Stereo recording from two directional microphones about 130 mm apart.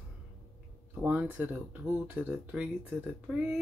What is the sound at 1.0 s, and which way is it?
Speech, 10° right (ahead or behind).